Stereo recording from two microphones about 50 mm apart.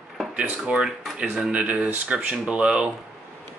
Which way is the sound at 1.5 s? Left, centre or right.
Right.